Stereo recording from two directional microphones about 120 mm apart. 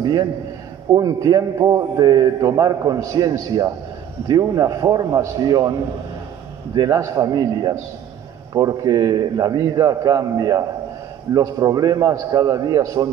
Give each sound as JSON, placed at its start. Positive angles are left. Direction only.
{"t": 0.0, "sound": "a man's voice", "side_deg": -30}